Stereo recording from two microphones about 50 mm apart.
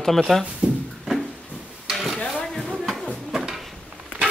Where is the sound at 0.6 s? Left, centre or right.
Right.